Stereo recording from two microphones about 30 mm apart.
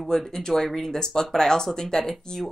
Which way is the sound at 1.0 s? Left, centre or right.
Centre.